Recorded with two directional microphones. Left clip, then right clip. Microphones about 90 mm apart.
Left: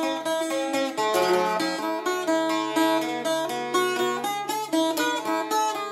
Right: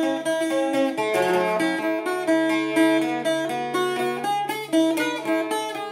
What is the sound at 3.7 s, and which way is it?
Music, 25° left (ahead or behind).